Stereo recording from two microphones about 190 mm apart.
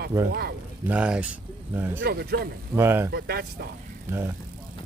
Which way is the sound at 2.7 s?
15° right (ahead or behind).